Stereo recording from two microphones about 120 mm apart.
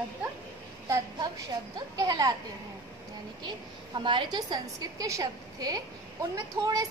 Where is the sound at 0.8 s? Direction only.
30° right (ahead or behind).